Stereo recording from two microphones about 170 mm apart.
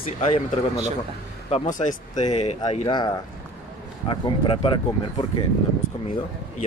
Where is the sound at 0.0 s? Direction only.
35° left (ahead or behind).